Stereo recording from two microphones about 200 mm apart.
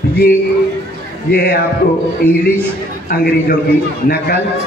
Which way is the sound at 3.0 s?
50° left (ahead or behind).